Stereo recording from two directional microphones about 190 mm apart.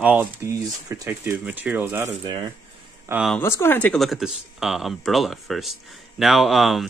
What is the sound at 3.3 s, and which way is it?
Speech, 10° left (ahead or behind).